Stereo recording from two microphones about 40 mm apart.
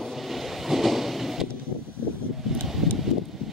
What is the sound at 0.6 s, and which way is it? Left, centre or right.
Train, centre.